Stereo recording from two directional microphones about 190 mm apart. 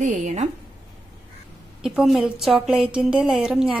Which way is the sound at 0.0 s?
40° right (ahead or behind).